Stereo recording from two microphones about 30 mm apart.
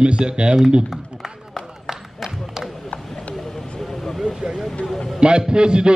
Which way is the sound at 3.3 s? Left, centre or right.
Centre.